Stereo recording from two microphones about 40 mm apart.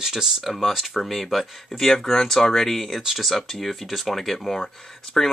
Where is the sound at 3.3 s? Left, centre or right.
Centre.